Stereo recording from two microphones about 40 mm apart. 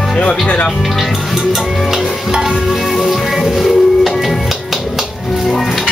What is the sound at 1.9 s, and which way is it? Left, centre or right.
Stir, centre.